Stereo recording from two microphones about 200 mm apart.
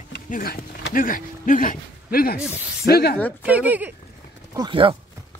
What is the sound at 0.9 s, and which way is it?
Speech, 45° left (ahead or behind).